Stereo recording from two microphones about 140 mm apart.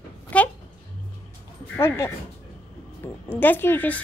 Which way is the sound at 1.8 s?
20° left (ahead or behind).